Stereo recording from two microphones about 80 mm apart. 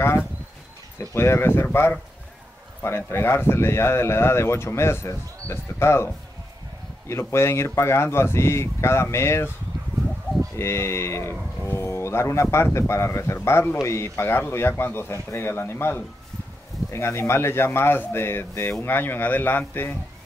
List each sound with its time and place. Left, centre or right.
1.1 s speech: left
10.5 s speech: left